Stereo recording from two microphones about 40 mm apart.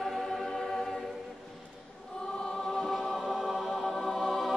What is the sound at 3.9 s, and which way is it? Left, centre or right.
Music, centre.